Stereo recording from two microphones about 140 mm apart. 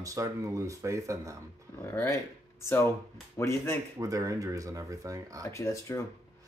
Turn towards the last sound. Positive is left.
turn(degrees=20)  # may be behind; listen again after turning